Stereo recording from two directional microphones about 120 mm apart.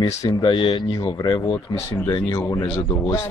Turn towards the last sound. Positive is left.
turn(degrees=30)  # may be behind; listen again after turning